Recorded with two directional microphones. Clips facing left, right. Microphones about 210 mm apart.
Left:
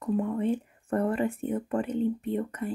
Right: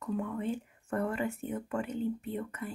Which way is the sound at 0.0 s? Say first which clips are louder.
Left 6 dB; 35° left (ahead or behind).